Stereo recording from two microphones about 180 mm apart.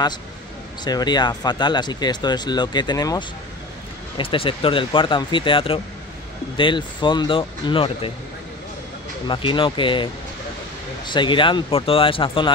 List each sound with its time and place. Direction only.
0.8 s speech: 25° left (ahead or behind)
9.3 s speech: 30° left (ahead or behind)
11.1 s speech: 25° left (ahead or behind)